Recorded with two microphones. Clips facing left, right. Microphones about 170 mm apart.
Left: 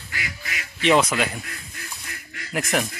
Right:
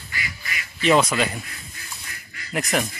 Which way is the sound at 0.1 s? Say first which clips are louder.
Even; 90° left.